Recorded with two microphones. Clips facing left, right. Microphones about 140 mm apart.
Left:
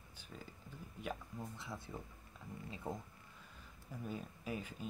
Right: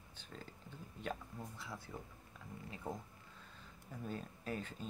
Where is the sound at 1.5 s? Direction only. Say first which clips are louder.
Left 1 dB; 25° left (ahead or behind).